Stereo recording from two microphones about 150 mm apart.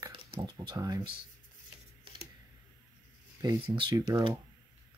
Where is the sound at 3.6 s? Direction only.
35° right (ahead or behind).